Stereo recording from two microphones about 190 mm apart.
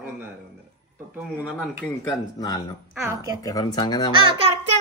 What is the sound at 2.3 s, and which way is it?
Speech, 20° left (ahead or behind).